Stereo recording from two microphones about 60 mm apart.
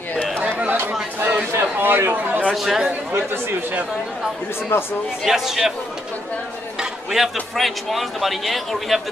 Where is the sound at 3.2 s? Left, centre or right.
Right.